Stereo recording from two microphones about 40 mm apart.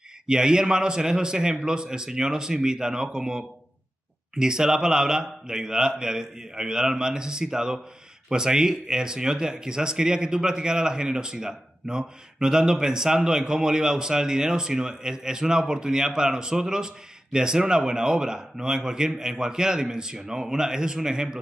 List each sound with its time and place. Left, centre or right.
0.3 s speech: centre